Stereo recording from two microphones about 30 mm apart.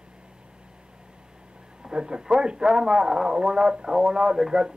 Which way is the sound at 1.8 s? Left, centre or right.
Right.